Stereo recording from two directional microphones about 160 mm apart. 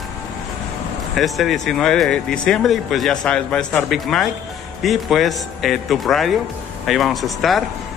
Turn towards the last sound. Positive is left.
turn(degrees=0)  # may be behind; listen again after turning